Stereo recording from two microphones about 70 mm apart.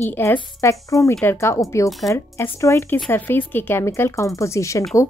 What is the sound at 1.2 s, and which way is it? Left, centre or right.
A woman's voice, left.